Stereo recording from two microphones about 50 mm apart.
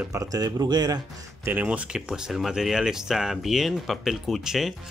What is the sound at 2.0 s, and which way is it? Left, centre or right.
Speech, centre.